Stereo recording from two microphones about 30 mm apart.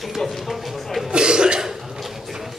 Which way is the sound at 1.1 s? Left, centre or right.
Right.